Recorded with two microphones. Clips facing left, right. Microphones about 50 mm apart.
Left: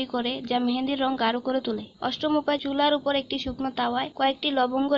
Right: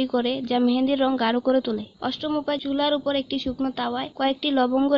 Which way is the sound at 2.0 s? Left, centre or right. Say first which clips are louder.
Left 1 dB; left.